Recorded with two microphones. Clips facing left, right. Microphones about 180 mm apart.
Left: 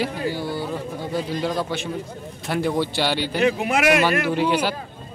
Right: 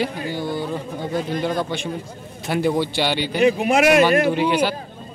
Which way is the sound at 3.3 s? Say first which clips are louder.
Right 6 dB; 20° right (ahead or behind).